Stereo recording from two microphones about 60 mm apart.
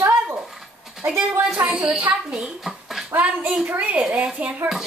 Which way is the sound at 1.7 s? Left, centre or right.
Right.